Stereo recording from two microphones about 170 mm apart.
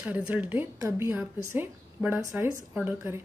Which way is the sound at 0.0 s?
10° right (ahead or behind).